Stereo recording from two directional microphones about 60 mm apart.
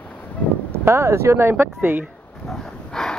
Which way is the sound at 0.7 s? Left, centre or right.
Right.